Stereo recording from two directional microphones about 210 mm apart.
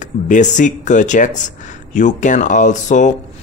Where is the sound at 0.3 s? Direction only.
35° left (ahead or behind).